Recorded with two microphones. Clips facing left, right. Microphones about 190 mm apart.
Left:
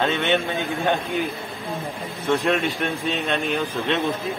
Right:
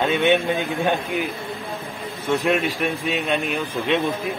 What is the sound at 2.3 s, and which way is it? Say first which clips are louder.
Speech: right 1 dB; 10° right (ahead or behind).